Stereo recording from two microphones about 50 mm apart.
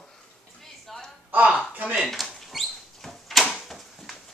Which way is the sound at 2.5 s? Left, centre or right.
Centre.